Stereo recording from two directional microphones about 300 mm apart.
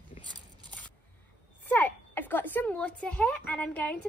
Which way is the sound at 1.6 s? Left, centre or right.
Centre.